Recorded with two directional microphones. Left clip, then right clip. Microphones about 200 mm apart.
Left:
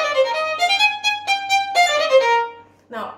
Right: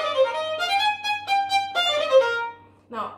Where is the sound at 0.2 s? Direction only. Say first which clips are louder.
Left 2 dB; 20° left (ahead or behind).